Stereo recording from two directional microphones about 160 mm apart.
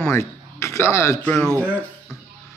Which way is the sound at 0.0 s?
15° left (ahead or behind).